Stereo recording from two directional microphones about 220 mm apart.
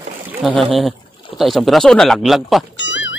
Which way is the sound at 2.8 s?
55° left (ahead or behind).